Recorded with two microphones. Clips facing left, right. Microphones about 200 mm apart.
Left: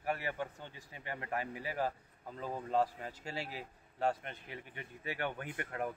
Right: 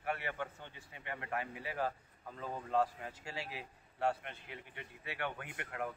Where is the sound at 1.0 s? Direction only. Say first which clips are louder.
Left 1 dB; 35° left (ahead or behind).